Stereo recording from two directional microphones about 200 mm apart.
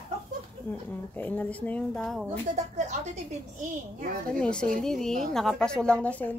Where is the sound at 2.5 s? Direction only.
35° right (ahead or behind).